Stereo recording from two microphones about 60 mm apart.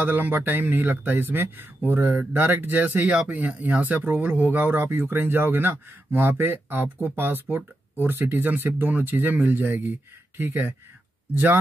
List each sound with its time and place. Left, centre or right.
0.0 s speech: right